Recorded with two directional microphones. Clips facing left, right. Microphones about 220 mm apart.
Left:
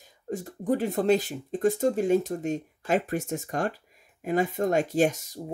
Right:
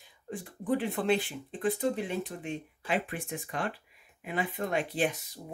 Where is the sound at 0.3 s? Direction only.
40° left (ahead or behind).